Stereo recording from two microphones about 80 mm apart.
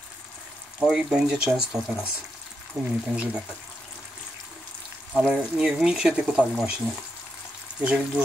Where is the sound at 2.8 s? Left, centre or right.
Right.